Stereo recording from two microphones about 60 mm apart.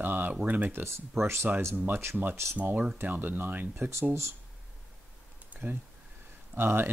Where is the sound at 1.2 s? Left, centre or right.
Right.